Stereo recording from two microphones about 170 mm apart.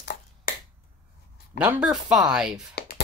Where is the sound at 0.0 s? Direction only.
65° left (ahead or behind).